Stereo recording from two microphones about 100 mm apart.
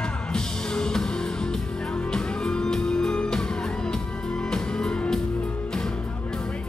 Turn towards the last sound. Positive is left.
turn(degrees=5)  # may be behind; listen again after turning